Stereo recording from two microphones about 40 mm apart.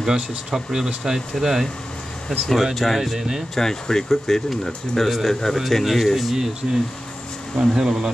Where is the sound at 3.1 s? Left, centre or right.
Centre.